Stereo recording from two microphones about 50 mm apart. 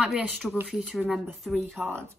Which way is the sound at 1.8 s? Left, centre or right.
Right.